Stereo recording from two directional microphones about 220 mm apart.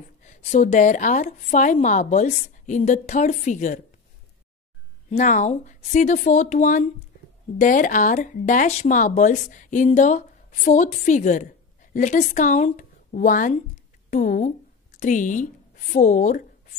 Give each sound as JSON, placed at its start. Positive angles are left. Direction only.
{"t": 0.2, "sound": "speech", "side_deg": 35}
{"t": 5.1, "sound": "speech", "side_deg": 35}